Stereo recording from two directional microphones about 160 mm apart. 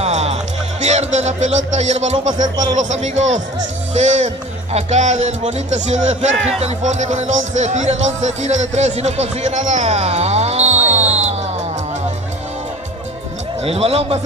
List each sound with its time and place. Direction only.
0.0 s speech: 45° right (ahead or behind)
13.7 s a man's voice: 40° right (ahead or behind)